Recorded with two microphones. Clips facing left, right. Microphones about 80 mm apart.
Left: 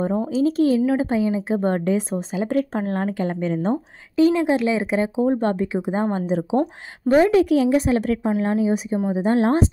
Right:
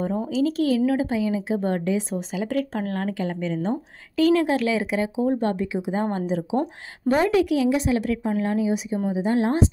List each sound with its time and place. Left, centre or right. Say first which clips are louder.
0.0 s a woman's voice: left 3 dB; left
4.2 s a woman's voice: left 2 dB; left
8.4 s a woman's voice: left 3 dB; left